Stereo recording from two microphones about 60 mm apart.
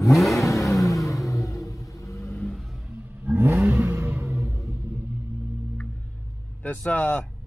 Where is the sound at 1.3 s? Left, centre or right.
Left.